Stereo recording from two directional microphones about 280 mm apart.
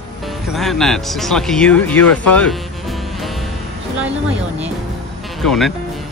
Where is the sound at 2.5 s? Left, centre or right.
Centre.